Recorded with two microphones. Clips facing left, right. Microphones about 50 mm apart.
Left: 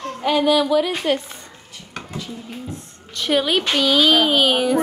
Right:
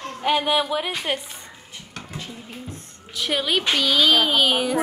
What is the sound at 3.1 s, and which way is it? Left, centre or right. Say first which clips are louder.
A woman's voice: left 4 dB; centre.